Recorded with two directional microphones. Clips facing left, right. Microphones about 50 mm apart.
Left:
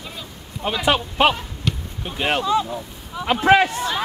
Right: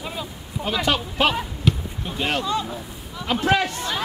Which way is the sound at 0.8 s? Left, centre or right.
Left.